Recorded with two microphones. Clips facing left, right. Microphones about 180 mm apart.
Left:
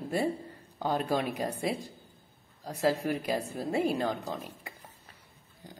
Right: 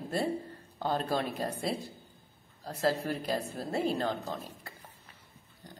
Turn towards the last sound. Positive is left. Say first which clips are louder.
# left 2 dB
turn(degrees=10)  # may be behind; listen again after turning